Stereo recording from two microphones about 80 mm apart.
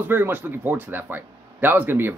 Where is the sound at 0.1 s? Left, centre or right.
Right.